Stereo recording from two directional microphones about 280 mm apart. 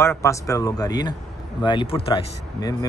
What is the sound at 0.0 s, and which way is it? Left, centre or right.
Speech, centre.